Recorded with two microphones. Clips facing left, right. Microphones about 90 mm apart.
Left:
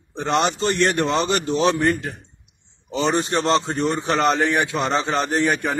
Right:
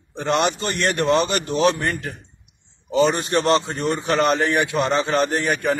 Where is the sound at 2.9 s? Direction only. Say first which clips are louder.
Right 2 dB; 20° left (ahead or behind).